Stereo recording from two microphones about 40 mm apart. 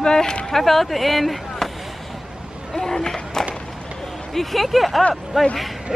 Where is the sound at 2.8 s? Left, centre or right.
Centre.